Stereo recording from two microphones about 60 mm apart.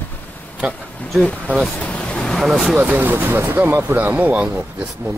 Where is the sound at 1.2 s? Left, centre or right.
Centre.